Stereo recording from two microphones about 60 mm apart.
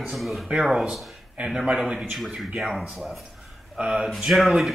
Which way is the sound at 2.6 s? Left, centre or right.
Centre.